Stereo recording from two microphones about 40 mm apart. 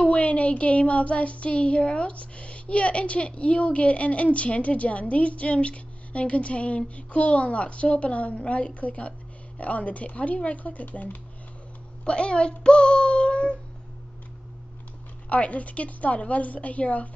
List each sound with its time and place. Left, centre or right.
0.0 s child singing: left
12.0 s speech: left
15.2 s child singing: left